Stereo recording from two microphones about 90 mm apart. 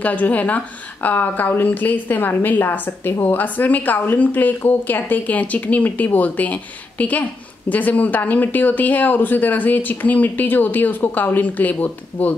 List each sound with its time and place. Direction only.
0.0 s a woman's voice: 15° left (ahead or behind)